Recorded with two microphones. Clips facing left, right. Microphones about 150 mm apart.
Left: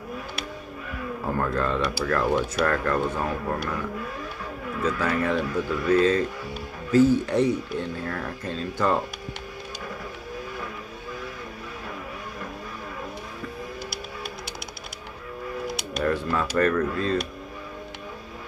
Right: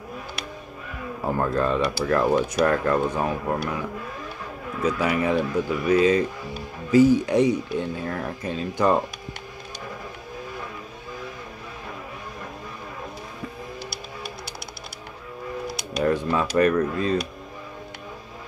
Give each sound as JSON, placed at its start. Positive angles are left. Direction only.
{"t": 1.2, "sound": "speech", "side_deg": -15}
{"t": 4.8, "sound": "speech", "side_deg": -15}
{"t": 16.0, "sound": "speech", "side_deg": -15}